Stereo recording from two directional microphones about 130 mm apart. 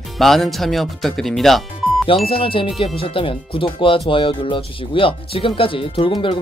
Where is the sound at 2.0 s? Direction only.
45° left (ahead or behind).